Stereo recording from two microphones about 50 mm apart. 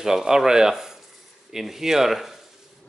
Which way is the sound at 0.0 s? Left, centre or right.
Centre.